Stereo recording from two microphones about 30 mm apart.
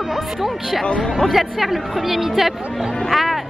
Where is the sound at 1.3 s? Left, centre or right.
Centre.